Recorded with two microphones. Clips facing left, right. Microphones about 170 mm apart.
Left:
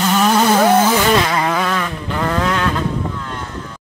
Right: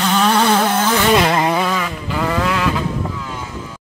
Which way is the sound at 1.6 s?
5° right (ahead or behind).